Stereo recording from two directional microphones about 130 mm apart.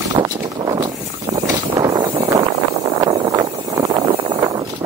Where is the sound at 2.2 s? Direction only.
25° right (ahead or behind).